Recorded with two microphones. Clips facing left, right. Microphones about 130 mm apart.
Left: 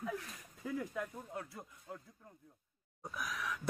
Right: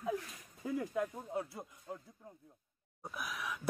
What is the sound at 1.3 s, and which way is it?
Speech, 25° right (ahead or behind).